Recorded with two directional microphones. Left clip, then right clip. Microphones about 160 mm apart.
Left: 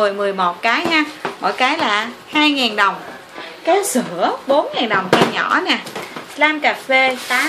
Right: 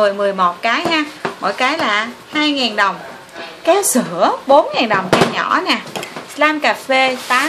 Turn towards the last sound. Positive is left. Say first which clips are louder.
# right 1 dB
turn(degrees=-15)  # may be behind; listen again after turning